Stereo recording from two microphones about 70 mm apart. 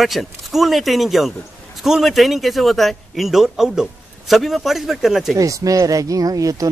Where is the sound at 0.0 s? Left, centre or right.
Centre.